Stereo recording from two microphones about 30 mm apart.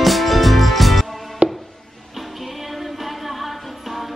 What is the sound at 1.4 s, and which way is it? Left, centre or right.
Music, right.